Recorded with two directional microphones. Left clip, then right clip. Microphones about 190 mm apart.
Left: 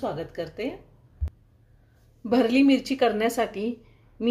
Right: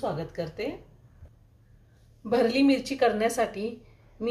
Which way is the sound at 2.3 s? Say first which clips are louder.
Left 2 dB; 45° left (ahead or behind).